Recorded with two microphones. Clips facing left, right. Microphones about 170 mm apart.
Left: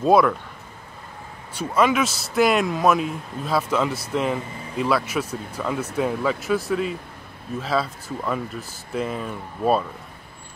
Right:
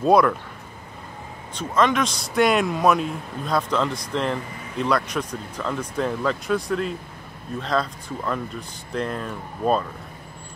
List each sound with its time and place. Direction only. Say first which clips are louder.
0.0 s speech: even; centre (ahead or behind)
1.5 s speech: left 1 dB; 10° left (ahead or behind)